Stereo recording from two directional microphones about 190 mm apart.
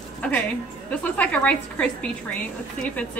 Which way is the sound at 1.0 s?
5° left (ahead or behind).